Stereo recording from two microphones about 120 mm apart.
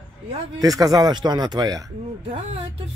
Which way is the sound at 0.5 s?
30° right (ahead or behind).